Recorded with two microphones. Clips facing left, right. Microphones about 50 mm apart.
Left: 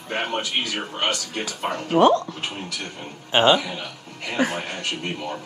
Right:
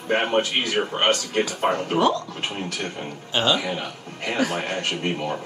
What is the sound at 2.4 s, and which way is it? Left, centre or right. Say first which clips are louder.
Speech: right 3 dB; right.